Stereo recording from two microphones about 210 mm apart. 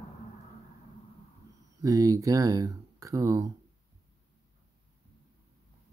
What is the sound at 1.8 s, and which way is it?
Speech, 15° right (ahead or behind).